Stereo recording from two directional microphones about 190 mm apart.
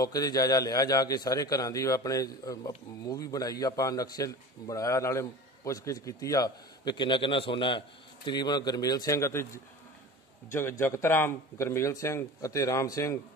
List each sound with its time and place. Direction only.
0.0 s a man's voice: 20° left (ahead or behind)